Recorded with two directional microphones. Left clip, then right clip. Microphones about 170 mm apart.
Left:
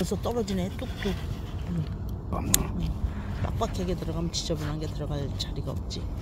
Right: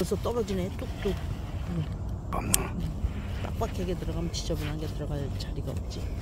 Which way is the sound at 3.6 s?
25° left (ahead or behind).